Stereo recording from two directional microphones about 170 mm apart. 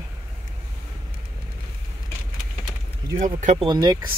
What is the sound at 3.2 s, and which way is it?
Speech, 50° right (ahead or behind).